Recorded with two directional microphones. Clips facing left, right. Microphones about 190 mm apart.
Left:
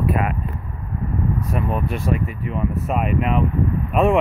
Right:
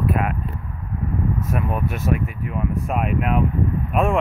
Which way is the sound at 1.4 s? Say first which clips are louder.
Left 1 dB; centre (ahead or behind).